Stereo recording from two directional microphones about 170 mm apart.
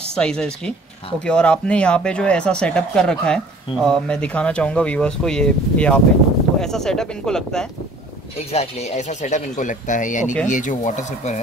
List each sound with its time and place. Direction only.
0.1 s speech: 5° left (ahead or behind)
8.5 s speech: 40° left (ahead or behind)